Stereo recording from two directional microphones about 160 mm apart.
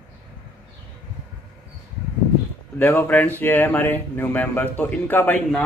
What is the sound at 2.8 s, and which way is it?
A man's voice, 10° left (ahead or behind).